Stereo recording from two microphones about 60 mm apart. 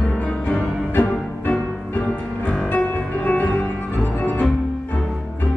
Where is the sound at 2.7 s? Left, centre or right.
Left.